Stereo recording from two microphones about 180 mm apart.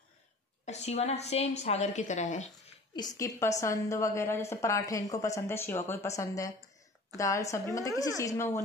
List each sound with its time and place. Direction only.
0.7 s a woman's voice: 35° left (ahead or behind)
3.0 s a woman's voice: 20° left (ahead or behind)